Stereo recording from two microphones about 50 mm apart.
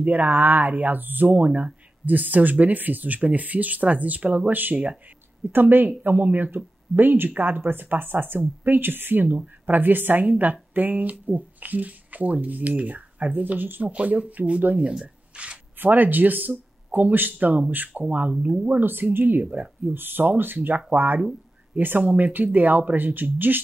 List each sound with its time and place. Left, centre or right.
0.0 s speech: right
13.8 s speech: right
15.3 s a sound: right
15.8 s speech: right
18.8 s speech: right